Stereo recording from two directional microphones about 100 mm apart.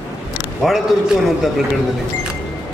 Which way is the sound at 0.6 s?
Centre (ahead or behind).